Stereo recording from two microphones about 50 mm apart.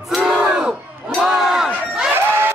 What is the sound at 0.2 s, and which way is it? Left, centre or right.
Crowd, centre.